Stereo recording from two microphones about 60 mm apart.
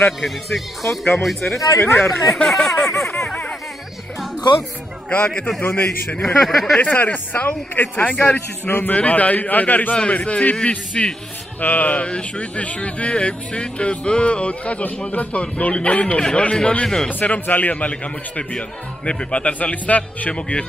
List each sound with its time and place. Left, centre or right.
0.2 s speech: centre
1.8 s speech: left
2.3 s speech: centre
2.9 s a sound: left
5.6 s a man's voice: left
6.2 s speech: centre
6.8 s a man's voice: left
8.9 s speech: left
17.1 s speech: left